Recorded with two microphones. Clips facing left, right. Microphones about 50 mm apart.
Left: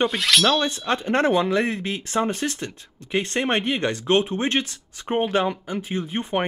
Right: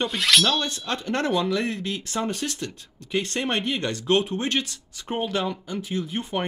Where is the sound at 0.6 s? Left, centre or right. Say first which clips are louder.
Left 5 dB; left.